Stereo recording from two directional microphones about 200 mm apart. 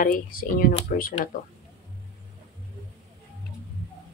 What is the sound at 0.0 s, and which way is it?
Speech, 45° left (ahead or behind).